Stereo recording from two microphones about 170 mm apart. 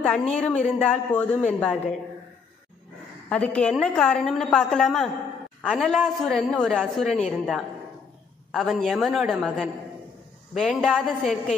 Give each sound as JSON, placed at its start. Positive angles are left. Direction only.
{"t": 0.4, "sound": "a woman's voice", "side_deg": 5}
{"t": 3.3, "sound": "a woman's voice", "side_deg": 5}